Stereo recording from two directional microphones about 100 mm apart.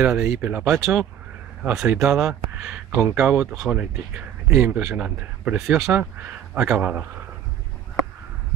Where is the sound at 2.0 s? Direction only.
5° right (ahead or behind).